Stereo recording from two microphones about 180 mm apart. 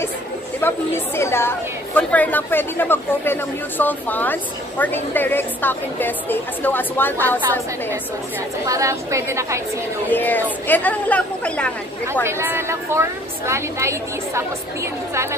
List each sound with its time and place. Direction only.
0.6 s a woman's voice: 10° left (ahead or behind)
8.6 s a woman's voice: 15° right (ahead or behind)
10.1 s a woman's voice: 10° left (ahead or behind)
12.1 s a woman's voice: 15° right (ahead or behind)